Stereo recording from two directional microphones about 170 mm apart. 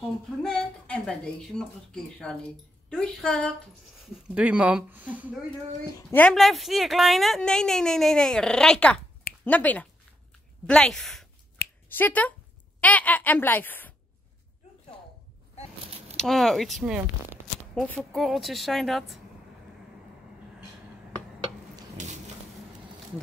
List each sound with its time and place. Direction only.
0.4 s speech: 5° left (ahead or behind)
4.0 s speech: 5° right (ahead or behind)
6.1 s speech: 5° left (ahead or behind)
16.2 s speech: centre (ahead or behind)
22.0 s a sound: 45° right (ahead or behind)